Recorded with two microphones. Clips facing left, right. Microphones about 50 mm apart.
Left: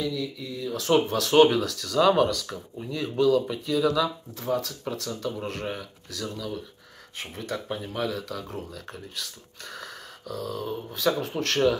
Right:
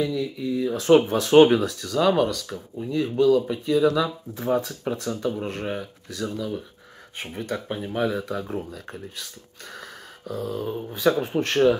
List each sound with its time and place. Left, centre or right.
0.0 s speech: right
5.3 s speech: centre
10.2 s speech: right